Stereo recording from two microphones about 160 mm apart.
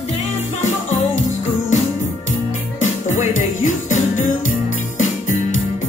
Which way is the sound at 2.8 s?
50° left (ahead or behind).